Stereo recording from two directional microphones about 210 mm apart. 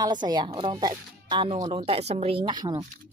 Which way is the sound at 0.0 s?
20° right (ahead or behind).